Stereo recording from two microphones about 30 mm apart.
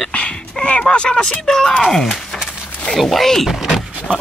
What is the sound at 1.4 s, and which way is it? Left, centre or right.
Speech, centre.